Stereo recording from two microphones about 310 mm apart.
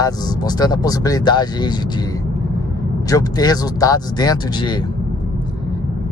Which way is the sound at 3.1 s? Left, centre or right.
Centre.